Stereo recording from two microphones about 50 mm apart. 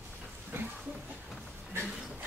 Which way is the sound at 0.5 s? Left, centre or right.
Right.